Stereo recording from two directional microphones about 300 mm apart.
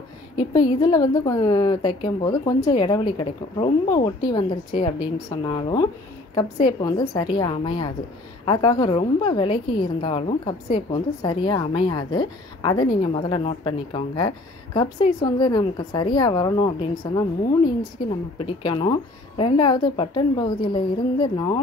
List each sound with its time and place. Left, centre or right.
0.4 s a woman's voice: centre